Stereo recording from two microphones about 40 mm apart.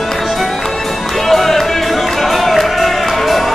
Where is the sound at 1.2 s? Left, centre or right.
Centre.